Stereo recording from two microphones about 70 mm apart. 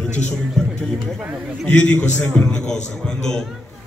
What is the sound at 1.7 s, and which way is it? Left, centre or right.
A man's voice, centre.